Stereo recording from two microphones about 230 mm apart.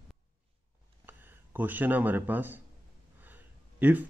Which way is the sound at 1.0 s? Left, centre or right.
Centre.